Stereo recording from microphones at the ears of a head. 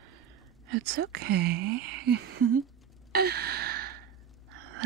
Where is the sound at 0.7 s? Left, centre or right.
Right.